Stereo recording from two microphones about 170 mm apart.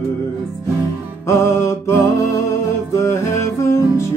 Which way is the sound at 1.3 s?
15° left (ahead or behind).